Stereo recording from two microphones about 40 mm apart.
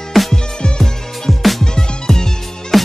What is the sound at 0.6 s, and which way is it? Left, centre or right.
Music, left.